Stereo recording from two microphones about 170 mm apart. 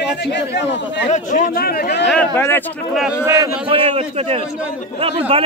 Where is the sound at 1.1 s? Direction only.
50° left (ahead or behind); by 2.1 s 70° left (ahead or behind).